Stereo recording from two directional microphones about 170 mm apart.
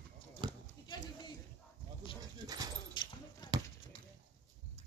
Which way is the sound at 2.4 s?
20° right (ahead or behind).